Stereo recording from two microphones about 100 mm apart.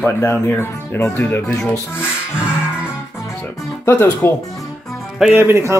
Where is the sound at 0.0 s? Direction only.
20° left (ahead or behind).